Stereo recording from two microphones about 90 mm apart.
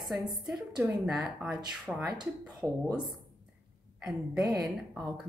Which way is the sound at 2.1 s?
50° right (ahead or behind).